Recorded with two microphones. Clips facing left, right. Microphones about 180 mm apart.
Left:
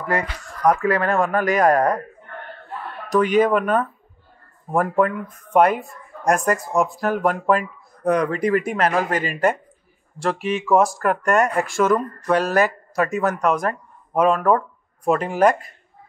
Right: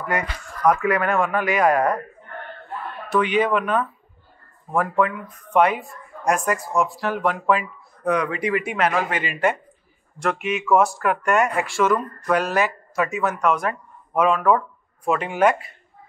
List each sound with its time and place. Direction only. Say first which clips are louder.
0.1 s speech: left 3 dB; 30° left (ahead or behind)
3.1 s speech: left 3 dB; 40° left (ahead or behind)